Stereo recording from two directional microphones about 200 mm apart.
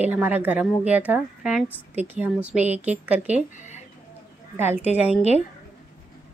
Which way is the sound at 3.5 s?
35° left (ahead or behind).